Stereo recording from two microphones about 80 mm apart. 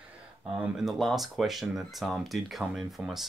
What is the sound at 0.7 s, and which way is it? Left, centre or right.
Speech, centre.